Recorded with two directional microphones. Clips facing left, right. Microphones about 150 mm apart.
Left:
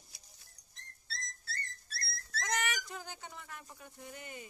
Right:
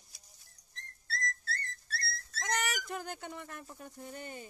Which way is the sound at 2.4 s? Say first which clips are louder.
Right 1 dB; 30° right (ahead or behind).